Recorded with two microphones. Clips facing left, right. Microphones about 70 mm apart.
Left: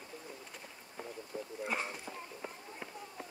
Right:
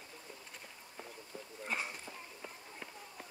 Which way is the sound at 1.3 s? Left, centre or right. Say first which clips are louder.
Left 7 dB; left.